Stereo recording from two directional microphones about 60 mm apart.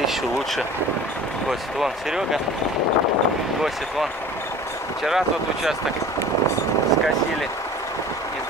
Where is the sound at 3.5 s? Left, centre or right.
Centre.